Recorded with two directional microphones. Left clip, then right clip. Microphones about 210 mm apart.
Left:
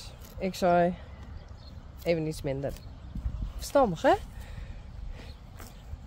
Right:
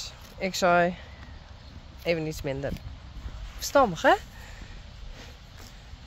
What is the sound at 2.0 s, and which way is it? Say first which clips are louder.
Speech: right 1 dB; centre (ahead or behind).